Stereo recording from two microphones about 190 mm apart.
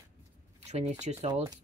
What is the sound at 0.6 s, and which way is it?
Speech, 35° right (ahead or behind).